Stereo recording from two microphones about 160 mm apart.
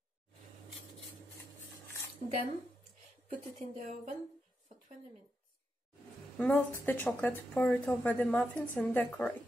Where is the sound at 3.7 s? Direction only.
50° right (ahead or behind).